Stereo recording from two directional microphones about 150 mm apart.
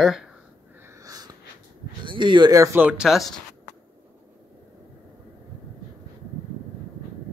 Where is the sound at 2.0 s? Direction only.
35° right (ahead or behind); by 3.4 s centre (ahead or behind).